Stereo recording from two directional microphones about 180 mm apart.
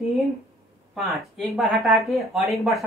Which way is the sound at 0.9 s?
Centre (ahead or behind).